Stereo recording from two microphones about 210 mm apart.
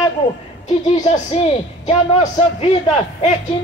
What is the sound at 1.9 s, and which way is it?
Speech, 30° left (ahead or behind).